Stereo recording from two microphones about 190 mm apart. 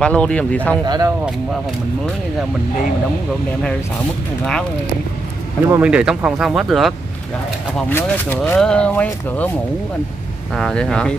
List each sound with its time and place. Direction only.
0.0 s speech: 5° left (ahead or behind)
0.8 s speech: 20° right (ahead or behind)
5.7 s speech: 5° right (ahead or behind)
7.7 s speech: 10° left (ahead or behind)
10.5 s speech: 5° left (ahead or behind)